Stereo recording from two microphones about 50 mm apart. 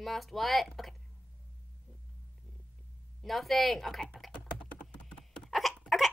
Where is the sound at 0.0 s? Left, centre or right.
Centre.